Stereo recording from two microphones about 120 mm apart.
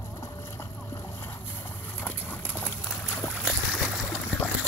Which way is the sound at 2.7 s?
20° left (ahead or behind).